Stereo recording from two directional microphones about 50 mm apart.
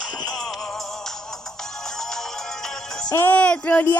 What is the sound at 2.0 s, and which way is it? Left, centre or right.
Music, centre.